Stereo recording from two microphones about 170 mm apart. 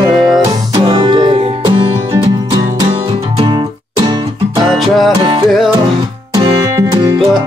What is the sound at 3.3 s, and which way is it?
Music, 25° right (ahead or behind).